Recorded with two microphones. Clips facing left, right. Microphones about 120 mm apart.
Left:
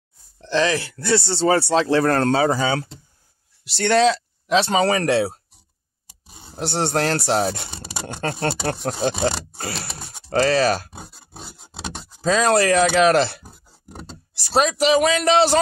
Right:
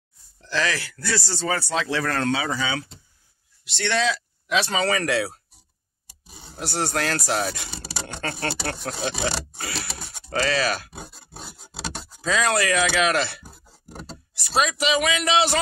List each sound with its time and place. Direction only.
0.4 s speech: 25° left (ahead or behind)
12.2 s speech: 35° left (ahead or behind)